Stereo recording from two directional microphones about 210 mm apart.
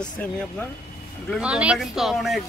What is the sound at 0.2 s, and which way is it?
Speech, 10° left (ahead or behind).